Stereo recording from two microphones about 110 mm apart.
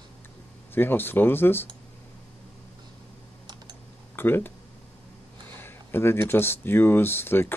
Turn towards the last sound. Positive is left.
turn(degrees=20)  # may be behind; listen again after turning